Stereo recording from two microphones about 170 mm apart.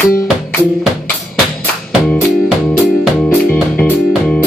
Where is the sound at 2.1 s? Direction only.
5° left (ahead or behind).